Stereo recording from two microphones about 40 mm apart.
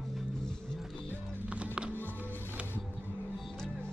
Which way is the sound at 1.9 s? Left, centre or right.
Left.